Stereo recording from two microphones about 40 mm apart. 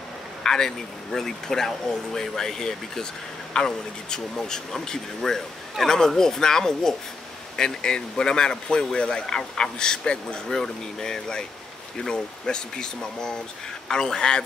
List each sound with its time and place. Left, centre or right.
0.4 s speech: centre